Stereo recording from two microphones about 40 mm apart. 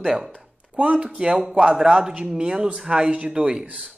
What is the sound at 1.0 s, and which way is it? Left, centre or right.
Speech, right.